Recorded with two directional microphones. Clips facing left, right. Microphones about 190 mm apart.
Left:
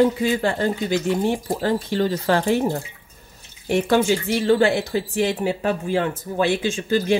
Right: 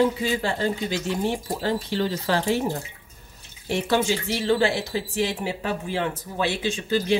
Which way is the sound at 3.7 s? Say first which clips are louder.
Left 5 dB; 50° left (ahead or behind).